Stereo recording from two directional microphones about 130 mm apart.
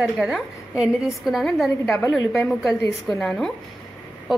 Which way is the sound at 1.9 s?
15° left (ahead or behind).